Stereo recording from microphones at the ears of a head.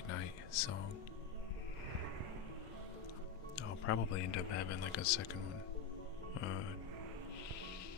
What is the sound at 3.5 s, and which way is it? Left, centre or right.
Speech, left.